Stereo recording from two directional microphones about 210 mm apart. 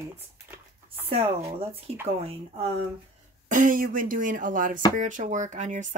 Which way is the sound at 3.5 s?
40° right (ahead or behind).